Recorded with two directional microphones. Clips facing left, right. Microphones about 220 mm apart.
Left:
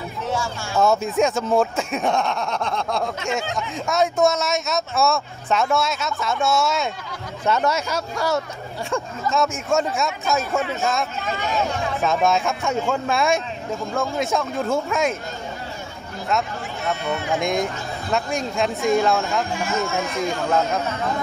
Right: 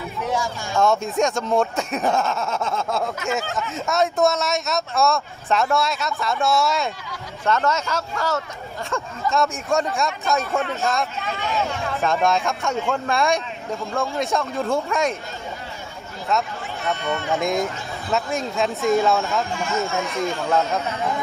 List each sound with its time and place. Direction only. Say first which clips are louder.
0.2 s a sound: right 1 dB; 15° right (ahead or behind)
0.7 s a man's voice: left 1 dB; centre (ahead or behind)
9.3 s a man's voice: left 1 dB; centre (ahead or behind)
16.3 s a man's voice: even; centre (ahead or behind)